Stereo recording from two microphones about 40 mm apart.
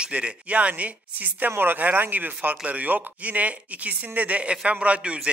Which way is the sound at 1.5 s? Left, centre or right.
Right.